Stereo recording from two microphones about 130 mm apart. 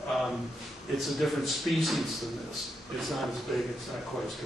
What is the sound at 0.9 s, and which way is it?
A man's voice, centre (ahead or behind).